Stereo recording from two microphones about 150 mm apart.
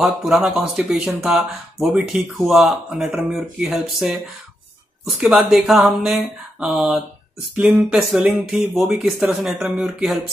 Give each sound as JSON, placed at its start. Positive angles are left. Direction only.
{"t": 0.0, "sound": "speech", "side_deg": 0}